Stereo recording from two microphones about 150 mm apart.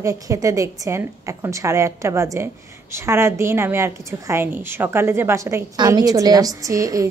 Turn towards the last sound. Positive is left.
turn(degrees=-20)  # may be behind; listen again after turning